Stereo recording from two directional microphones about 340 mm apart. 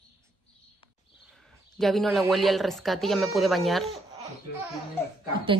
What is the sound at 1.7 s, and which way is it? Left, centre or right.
Speech, centre.